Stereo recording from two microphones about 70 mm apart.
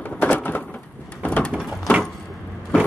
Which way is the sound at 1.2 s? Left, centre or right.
Centre.